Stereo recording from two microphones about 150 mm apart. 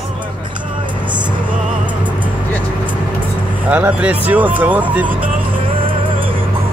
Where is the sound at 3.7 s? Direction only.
10° right (ahead or behind).